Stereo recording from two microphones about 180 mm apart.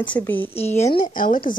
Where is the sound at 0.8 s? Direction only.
40° left (ahead or behind).